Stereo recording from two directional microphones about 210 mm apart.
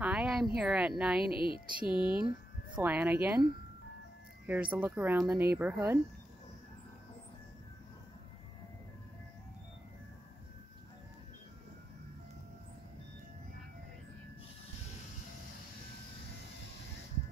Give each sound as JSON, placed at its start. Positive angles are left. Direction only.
{"t": 0.0, "sound": "a sound", "side_deg": -5}
{"t": 0.6, "sound": "speech", "side_deg": -5}
{"t": 1.3, "sound": "speech", "side_deg": 25}
{"t": 2.7, "sound": "speech", "side_deg": -5}
{"t": 4.5, "sound": "speech", "side_deg": -5}